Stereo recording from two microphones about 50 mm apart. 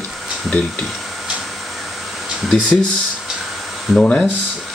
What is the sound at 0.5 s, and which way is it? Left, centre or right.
Speech, left.